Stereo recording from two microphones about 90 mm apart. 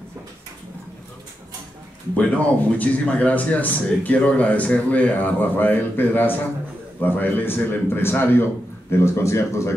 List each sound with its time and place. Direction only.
2.1 s a man's voice: 15° left (ahead or behind); by 9.8 s 30° left (ahead or behind)